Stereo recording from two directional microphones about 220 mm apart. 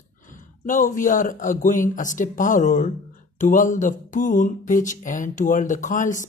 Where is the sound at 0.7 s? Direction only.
35° left (ahead or behind).